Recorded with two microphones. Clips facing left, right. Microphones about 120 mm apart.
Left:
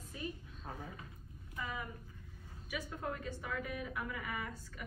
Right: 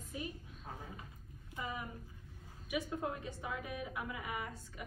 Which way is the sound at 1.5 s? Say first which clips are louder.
Even; 20° right (ahead or behind).